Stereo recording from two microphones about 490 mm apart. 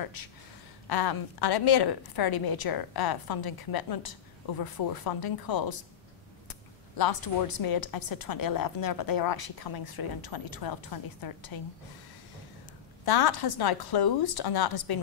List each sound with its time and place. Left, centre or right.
0.0 s a woman's voice: left
7.0 s a woman's voice: left
13.0 s a woman's voice: left